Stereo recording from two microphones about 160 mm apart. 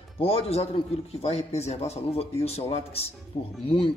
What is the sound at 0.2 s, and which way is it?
Speech, 40° left (ahead or behind).